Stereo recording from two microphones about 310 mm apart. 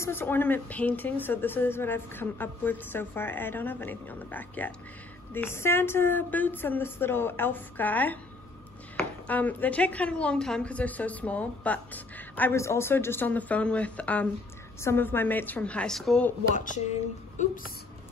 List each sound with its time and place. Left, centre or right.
0.0 s a woman's voice: centre
9.3 s a woman's voice: centre
16.5 s speech: left